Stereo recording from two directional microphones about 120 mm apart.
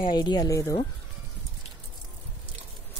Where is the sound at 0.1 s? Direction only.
35° left (ahead or behind).